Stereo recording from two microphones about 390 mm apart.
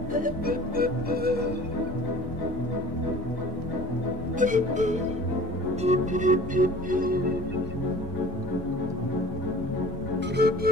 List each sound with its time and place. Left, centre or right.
0.1 s music: right
4.4 s music: centre
10.3 s music: right